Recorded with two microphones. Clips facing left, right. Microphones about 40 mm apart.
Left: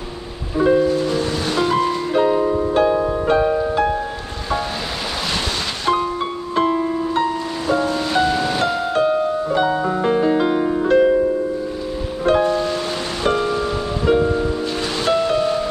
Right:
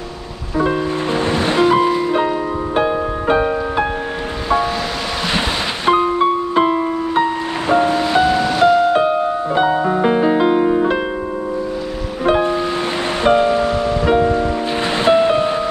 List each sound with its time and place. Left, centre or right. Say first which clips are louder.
0.8 s music: even; right
5.9 s music: right 6 dB; right
7.6 s music: right 5 dB; right
8.0 s music: right 4 dB; centre
8.9 s music: right 2 dB; centre
12.3 s music: right 1 dB; right